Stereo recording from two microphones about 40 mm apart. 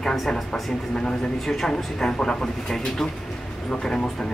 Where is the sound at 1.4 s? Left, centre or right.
Centre.